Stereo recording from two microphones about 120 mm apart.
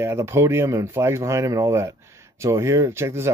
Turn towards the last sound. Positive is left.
turn(degrees=-20)  # may be behind; listen again after turning